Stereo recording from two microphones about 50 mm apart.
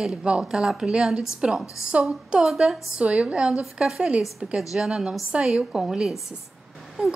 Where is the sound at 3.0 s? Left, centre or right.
Right.